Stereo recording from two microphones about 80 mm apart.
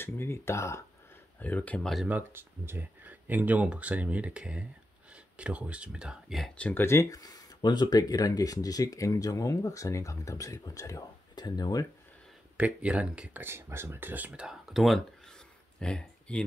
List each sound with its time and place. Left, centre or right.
0.0 s speech: left
1.4 s speech: centre
2.0 s speech: right; by 6.3 s centre
6.5 s speech: centre
6.8 s speech: left
7.1 s speech: left
11.3 s speech: left
12.5 s speech: centre
13.4 s speech: right
14.4 s a sound: centre